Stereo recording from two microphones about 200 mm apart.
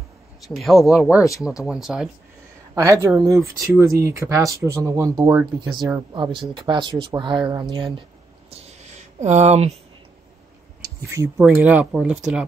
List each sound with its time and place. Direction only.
0.5 s speech: centre (ahead or behind)
2.7 s speech: 15° right (ahead or behind)
8.5 s owl: 30° right (ahead or behind)
9.2 s speech: 35° right (ahead or behind)
11.1 s speech: 15° right (ahead or behind)